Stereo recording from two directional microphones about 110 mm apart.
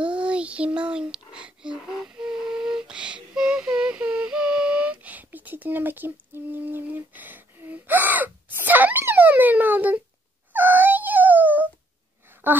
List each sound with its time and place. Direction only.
0.0 s child singing: 10° right (ahead or behind)
10.5 s wail: 15° right (ahead or behind)
12.3 s a sound: 15° right (ahead or behind)